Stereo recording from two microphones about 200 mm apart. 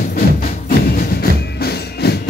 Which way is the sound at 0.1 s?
45° left (ahead or behind).